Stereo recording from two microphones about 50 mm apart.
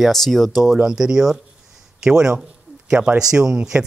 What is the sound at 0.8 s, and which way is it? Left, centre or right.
Speech, centre.